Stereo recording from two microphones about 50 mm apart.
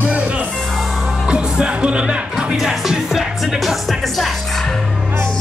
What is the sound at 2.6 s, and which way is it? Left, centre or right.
Music, centre.